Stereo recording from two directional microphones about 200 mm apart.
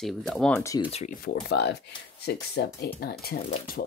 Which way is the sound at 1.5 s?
55° left (ahead or behind).